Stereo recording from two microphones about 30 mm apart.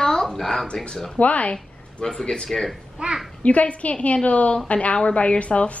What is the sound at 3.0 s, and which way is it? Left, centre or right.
Speech, right.